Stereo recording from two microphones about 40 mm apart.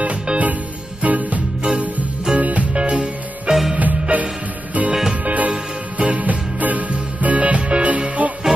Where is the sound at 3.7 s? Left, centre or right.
Right.